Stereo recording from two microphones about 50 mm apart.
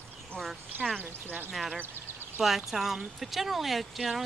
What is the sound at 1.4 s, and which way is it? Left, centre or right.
Speech, centre.